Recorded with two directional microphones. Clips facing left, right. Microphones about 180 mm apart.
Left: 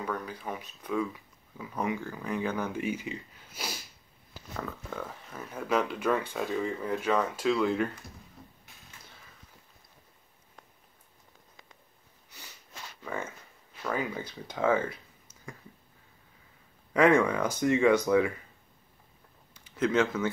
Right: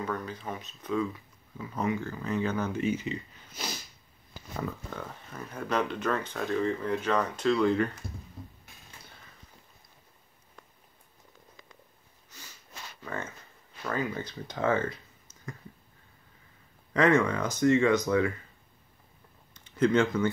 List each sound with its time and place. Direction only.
0.0 s speech: 10° left (ahead or behind)
4.9 s speech: 5° left (ahead or behind)
13.0 s speech: 10° left (ahead or behind)
16.9 s speech: 10° left (ahead or behind)
19.5 s a sound: 5° left (ahead or behind)